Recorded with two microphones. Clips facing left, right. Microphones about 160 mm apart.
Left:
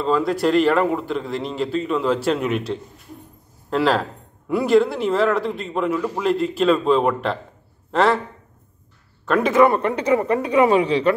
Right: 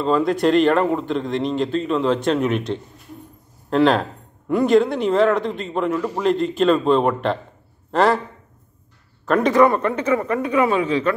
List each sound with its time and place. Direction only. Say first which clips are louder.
0.0 s a man's voice: right 2 dB; centre (ahead or behind)
9.2 s a man's voice: right 1 dB; centre (ahead or behind)
10.0 s speech: left 1 dB; 20° left (ahead or behind)
10.8 s a man's voice: left 2 dB; 35° left (ahead or behind)